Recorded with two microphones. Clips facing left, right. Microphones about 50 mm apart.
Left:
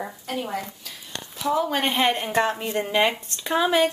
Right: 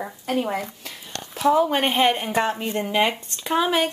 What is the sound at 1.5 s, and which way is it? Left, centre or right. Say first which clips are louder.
Speech: even; centre.